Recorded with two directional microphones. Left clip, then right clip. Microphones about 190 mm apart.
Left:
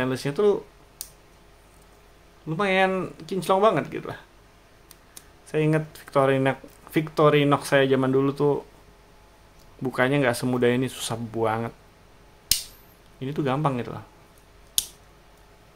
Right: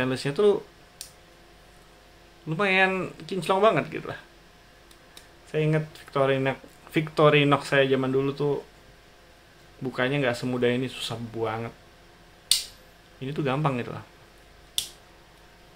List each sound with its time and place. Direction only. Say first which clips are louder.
0.0 s speech: even; 10° left (ahead or behind)
2.4 s speech: even; 10° left (ahead or behind)
5.5 s speech: left 2 dB; 20° left (ahead or behind)
9.8 s speech: left 3 dB; 20° left (ahead or behind)
13.2 s speech: left 2 dB; 15° left (ahead or behind)